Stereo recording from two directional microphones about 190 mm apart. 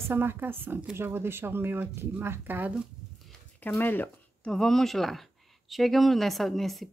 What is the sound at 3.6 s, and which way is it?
Speech, 10° left (ahead or behind).